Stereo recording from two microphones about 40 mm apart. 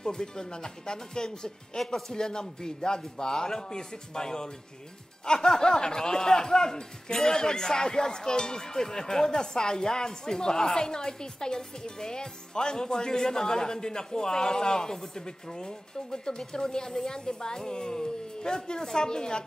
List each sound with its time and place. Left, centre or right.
0.0 s speech: centre